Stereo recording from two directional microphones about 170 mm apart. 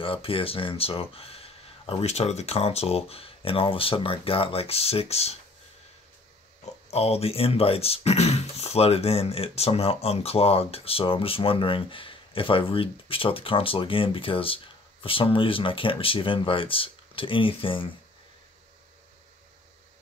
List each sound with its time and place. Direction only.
0.0 s speech: 30° left (ahead or behind)
6.6 s speech: 35° left (ahead or behind)